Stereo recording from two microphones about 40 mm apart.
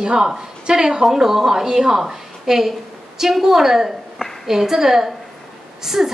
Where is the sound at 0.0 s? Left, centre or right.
Centre.